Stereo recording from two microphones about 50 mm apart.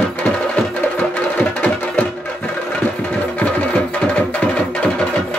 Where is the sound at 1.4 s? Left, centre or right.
Left.